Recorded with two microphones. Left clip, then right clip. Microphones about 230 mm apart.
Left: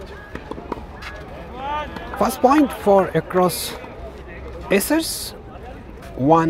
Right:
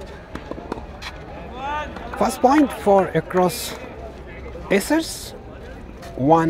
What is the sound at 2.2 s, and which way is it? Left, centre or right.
A man's voice, centre.